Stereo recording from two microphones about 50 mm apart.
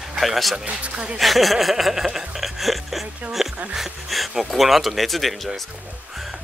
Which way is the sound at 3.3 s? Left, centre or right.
Centre.